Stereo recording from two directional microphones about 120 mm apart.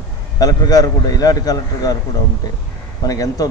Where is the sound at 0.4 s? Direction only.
30° left (ahead or behind).